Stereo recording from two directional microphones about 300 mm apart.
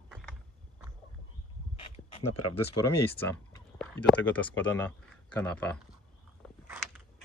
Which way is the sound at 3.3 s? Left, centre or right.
Centre.